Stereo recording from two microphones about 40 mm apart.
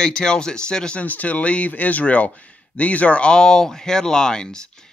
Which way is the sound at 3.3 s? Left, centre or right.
Centre.